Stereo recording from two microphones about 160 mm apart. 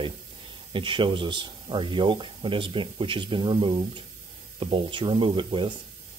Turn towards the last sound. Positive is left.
turn(degrees=-30)  # may be behind; listen again after turning